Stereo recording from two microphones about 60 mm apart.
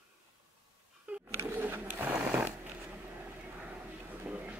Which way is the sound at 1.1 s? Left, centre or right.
Right.